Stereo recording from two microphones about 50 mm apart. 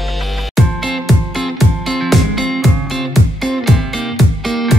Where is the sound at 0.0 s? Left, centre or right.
Centre.